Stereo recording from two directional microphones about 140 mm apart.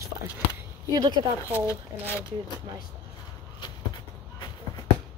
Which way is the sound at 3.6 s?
30° left (ahead or behind).